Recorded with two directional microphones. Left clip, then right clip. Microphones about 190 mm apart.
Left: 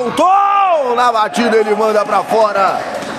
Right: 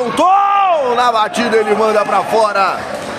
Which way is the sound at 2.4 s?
5° right (ahead or behind).